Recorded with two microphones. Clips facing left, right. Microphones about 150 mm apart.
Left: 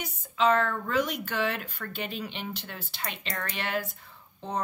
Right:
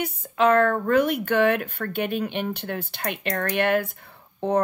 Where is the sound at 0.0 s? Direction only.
55° right (ahead or behind).